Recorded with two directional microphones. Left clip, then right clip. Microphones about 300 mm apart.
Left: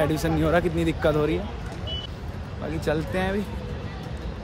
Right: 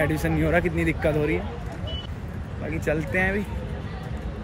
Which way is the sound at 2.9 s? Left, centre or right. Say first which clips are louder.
Right 2 dB; centre.